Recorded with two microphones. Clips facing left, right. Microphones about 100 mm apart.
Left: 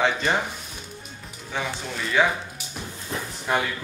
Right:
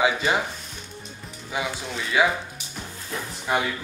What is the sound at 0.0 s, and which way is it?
Music, 10° right (ahead or behind).